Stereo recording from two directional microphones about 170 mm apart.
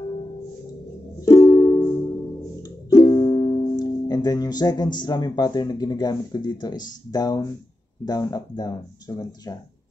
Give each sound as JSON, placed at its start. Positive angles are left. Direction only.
{"t": 1.2, "sound": "music", "side_deg": 20}
{"t": 2.9, "sound": "music", "side_deg": 20}
{"t": 3.8, "sound": "speech", "side_deg": 25}